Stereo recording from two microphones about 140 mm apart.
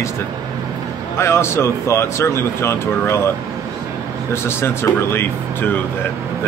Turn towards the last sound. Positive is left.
turn(degrees=15)  # may be behind; listen again after turning